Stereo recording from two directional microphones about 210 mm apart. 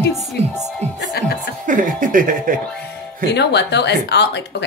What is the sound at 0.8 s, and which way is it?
Music, 30° right (ahead or behind).